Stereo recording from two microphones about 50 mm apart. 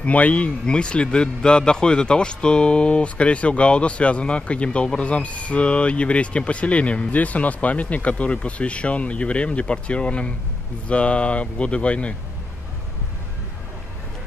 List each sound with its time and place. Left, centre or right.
0.0 s a man's voice: left